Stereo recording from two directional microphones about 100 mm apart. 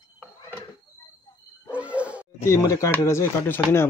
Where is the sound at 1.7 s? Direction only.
15° right (ahead or behind).